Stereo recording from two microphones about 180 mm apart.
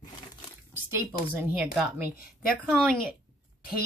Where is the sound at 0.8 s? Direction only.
15° right (ahead or behind).